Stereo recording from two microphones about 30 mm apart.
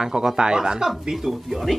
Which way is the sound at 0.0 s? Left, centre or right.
Centre.